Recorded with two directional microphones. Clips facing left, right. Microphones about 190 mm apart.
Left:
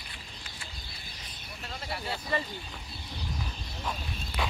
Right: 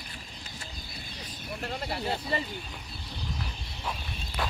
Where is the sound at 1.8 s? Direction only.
25° right (ahead or behind).